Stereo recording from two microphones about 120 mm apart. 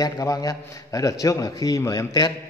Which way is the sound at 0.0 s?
30° left (ahead or behind).